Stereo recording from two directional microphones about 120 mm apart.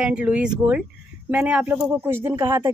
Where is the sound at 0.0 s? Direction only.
10° right (ahead or behind).